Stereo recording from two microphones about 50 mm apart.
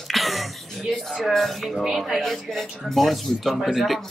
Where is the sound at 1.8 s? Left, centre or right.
Centre.